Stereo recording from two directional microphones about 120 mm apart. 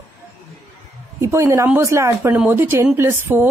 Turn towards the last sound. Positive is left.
turn(degrees=-20)  # may be behind; listen again after turning